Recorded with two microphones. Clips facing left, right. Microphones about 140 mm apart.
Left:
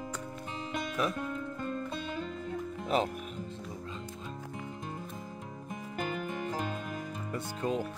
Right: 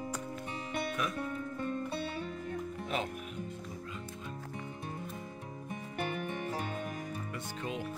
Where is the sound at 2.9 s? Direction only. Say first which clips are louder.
Left 7 dB; 35° left (ahead or behind).